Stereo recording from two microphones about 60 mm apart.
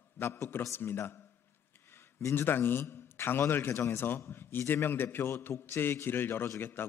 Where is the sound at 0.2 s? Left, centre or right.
Left.